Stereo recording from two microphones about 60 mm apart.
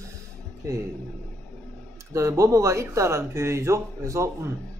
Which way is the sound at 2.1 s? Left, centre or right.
Right.